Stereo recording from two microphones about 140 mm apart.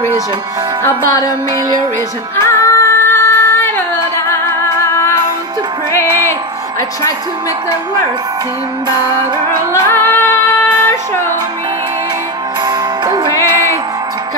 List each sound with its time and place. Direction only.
2.3 s music: 20° left (ahead or behind)
9.7 s female singing: 20° left (ahead or behind)
12.6 s music: 30° right (ahead or behind)